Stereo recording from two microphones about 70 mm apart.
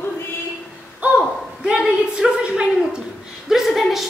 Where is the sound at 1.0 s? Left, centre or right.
Centre.